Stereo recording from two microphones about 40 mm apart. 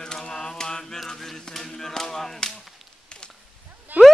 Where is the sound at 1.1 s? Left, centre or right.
Centre.